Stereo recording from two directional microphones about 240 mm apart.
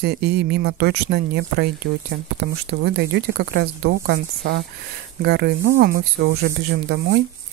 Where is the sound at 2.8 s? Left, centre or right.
Right.